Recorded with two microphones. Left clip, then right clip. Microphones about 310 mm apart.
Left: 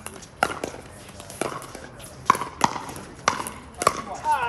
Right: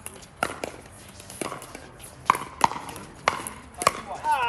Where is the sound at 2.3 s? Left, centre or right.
Right.